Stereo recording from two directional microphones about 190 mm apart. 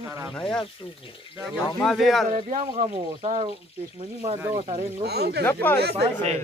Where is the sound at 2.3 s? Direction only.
40° right (ahead or behind).